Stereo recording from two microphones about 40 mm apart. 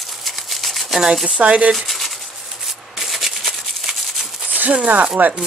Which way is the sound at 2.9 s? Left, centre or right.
Centre.